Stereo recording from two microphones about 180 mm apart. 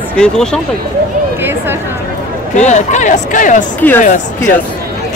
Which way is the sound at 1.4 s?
10° right (ahead or behind).